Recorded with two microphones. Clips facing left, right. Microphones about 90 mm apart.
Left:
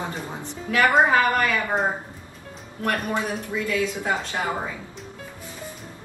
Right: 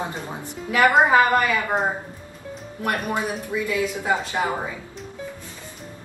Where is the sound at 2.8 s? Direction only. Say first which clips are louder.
Even; 15° right (ahead or behind).